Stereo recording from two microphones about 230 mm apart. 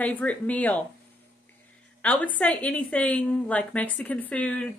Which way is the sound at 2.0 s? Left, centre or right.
Centre.